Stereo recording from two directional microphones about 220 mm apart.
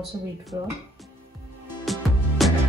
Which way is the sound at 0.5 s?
20° right (ahead or behind).